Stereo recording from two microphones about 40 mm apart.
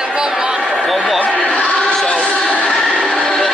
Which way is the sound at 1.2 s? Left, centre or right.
Left.